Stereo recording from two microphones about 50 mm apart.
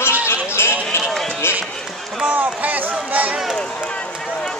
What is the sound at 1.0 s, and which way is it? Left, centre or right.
Run, centre.